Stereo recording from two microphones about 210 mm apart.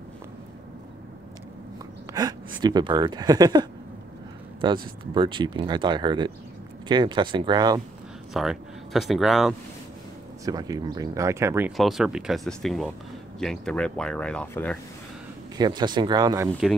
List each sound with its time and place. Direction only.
2.1 s a sound: 15° right (ahead or behind)
2.6 s speech: 20° right (ahead or behind)
8.3 s speech: centre (ahead or behind)
10.4 s speech: 15° right (ahead or behind)
11.7 s speech: centre (ahead or behind)
15.5 s speech: 20° right (ahead or behind)